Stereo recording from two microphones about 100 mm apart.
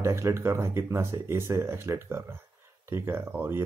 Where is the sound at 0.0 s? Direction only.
30° right (ahead or behind).